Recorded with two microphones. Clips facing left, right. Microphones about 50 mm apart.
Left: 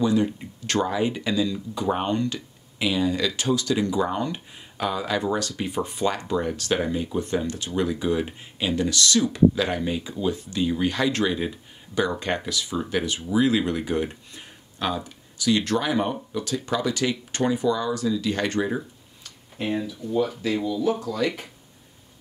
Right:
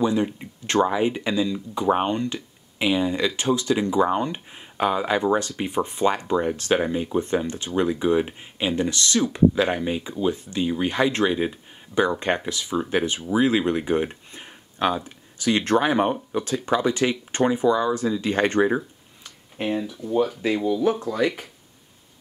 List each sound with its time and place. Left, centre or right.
0.0 s speech: right
18.8 s a sound: centre
20.6 s speech: right